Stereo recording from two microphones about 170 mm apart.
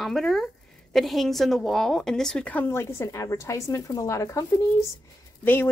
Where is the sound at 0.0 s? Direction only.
Centre (ahead or behind).